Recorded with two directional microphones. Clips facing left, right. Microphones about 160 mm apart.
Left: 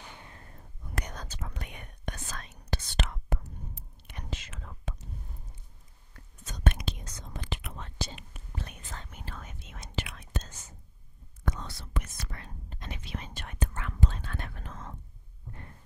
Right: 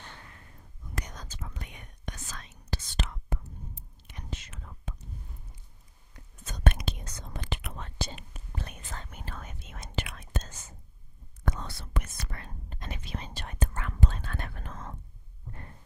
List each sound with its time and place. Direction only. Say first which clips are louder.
0.8 s whispering: left 2 dB; 65° left (ahead or behind); by 4.9 s 90° left
6.4 s whispering: right 1 dB; 55° right (ahead or behind)
8.2 s whispering: right 1 dB; 40° right (ahead or behind)
13.2 s whispering: right 1 dB; 35° right (ahead or behind)
13.9 s whispering: right 1 dB; 55° right (ahead or behind)